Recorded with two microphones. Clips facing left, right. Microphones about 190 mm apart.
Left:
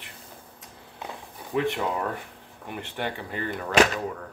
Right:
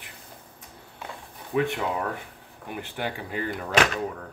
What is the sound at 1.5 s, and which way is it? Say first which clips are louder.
Speech: even; centre (ahead or behind).